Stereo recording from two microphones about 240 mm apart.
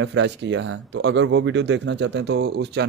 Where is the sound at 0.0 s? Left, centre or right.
Right.